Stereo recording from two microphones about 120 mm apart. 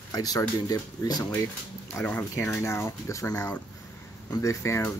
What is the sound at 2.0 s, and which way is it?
Speech, 15° left (ahead or behind).